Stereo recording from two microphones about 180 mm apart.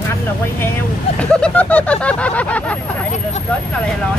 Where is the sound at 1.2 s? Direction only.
5° left (ahead or behind).